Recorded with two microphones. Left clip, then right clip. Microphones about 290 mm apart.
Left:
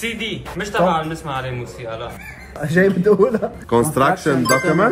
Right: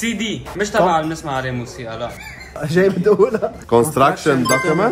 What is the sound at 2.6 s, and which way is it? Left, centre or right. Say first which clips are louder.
Speech: even; centre.